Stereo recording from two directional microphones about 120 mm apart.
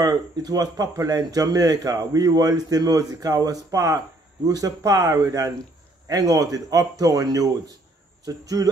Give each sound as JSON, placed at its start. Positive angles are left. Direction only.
{"t": 0.0, "sound": "speech", "side_deg": -30}